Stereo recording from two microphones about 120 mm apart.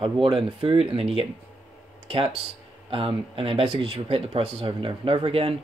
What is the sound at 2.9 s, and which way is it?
Speech, 50° right (ahead or behind).